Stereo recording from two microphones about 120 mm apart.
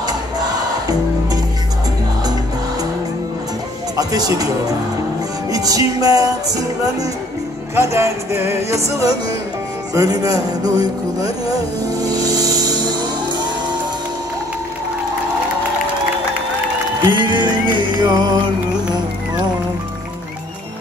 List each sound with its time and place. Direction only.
3.9 s speech: 30° right (ahead or behind)
5.5 s music: 30° right (ahead or behind)
9.9 s speech: 30° right (ahead or behind)
17.1 s music: 40° right (ahead or behind)